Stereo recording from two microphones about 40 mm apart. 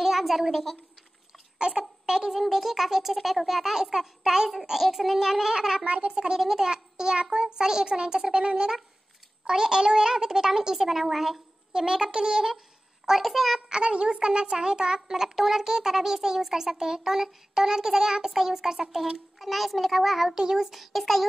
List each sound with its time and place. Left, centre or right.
0.0 s a woman's voice: centre
1.6 s a child's voice: right
5.9 s a child's voice: right
6.4 s a child's voice: centre
13.2 s a child's voice: centre
13.7 s a child's voice: right; by 20.3 s centre
20.3 s a child's voice: centre